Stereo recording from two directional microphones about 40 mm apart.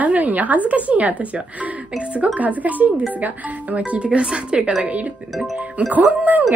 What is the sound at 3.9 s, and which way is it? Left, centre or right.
Speech, right.